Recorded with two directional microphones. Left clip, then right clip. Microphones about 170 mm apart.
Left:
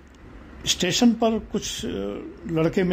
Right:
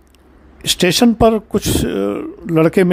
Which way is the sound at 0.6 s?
50° right (ahead or behind).